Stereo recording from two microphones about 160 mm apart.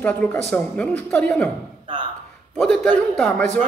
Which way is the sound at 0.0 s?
10° left (ahead or behind).